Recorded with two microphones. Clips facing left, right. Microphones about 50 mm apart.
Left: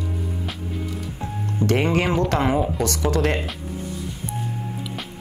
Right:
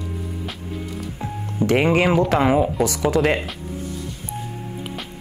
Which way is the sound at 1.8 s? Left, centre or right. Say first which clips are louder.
Right 3 dB; centre.